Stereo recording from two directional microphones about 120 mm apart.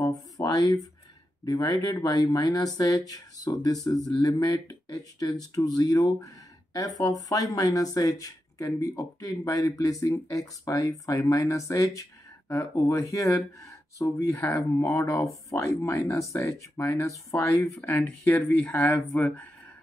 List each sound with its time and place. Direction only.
0.0 s a sound: 30° left (ahead or behind)
1.4 s speech: 35° left (ahead or behind)
14.3 s speech: 15° left (ahead or behind)